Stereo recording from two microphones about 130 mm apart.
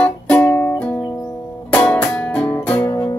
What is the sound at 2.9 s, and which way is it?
Music, 30° left (ahead or behind).